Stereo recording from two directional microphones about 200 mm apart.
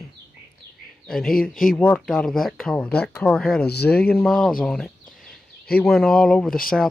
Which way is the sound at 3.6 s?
55° left (ahead or behind).